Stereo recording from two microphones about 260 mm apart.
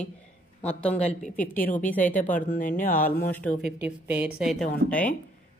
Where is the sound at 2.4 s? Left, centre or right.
Left.